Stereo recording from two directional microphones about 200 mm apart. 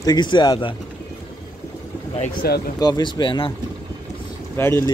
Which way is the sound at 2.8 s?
20° left (ahead or behind).